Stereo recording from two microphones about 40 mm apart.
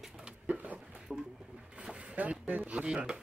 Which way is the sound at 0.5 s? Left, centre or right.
Right.